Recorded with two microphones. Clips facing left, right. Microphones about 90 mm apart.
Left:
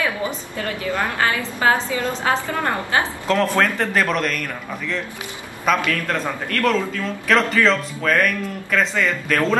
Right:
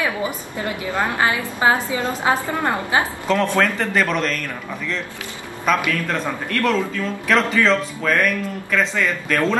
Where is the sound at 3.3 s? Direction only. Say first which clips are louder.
Even; centre (ahead or behind).